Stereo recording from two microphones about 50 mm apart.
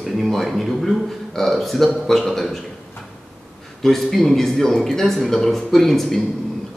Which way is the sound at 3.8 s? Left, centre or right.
Centre.